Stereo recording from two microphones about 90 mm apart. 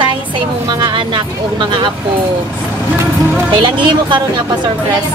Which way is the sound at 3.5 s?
60° right (ahead or behind).